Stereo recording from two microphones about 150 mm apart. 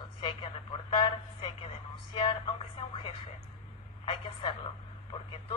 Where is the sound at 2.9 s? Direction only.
35° left (ahead or behind).